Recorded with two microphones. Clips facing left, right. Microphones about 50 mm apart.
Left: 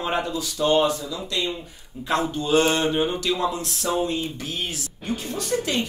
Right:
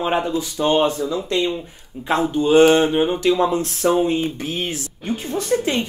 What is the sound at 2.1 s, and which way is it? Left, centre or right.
Speech, centre.